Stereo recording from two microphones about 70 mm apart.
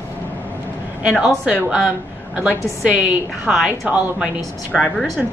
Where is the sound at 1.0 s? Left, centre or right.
Centre.